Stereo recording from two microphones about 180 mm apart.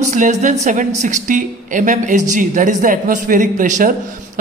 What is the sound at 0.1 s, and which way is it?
A woman's voice, 45° right (ahead or behind).